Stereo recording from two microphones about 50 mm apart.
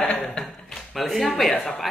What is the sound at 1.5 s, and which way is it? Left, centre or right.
Speech, centre.